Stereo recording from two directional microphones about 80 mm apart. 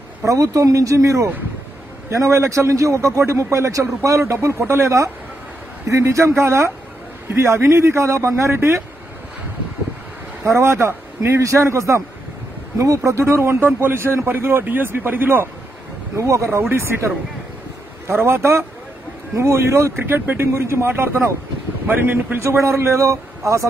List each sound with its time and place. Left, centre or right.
0.2 s a man's voice: right
10.4 s a man's voice: right
16.2 s a man's voice: right
18.2 s a man's voice: right
22.4 s a man's voice: right